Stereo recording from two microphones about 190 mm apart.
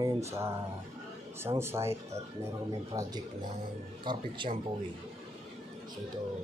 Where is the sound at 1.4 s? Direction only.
15° right (ahead or behind).